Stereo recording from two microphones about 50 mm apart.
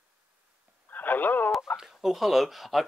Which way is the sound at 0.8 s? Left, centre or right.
Left.